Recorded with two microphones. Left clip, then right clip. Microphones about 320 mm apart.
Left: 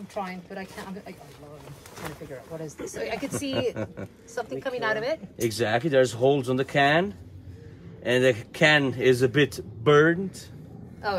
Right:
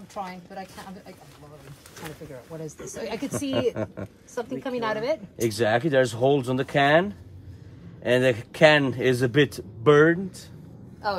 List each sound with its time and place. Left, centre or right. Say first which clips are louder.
0.2 s speech: left 1 dB; centre
3.0 s a man's voice: even; centre